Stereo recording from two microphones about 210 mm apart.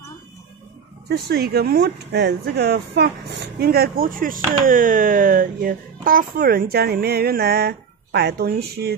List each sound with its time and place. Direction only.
1.0 s speech: 50° right (ahead or behind)